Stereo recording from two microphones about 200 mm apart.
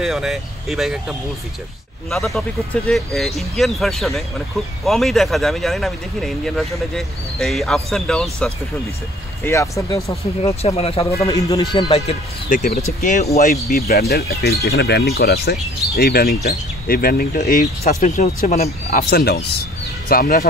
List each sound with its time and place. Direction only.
0.0 s speech: centre (ahead or behind)
9.4 s speech: 15° left (ahead or behind)
10.5 s speech: 30° left (ahead or behind)
11.2 s speech: 15° left (ahead or behind)
11.7 s speech: 30° left (ahead or behind)
13.7 s speech: 50° left (ahead or behind)
18.9 s speech: 50° left (ahead or behind)